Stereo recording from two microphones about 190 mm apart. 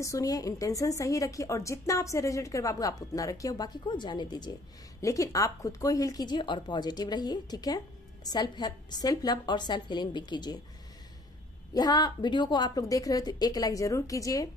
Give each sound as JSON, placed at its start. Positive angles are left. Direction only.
{"t": 0.0, "sound": "a woman's voice", "side_deg": 15}
{"t": 11.7, "sound": "speech", "side_deg": 20}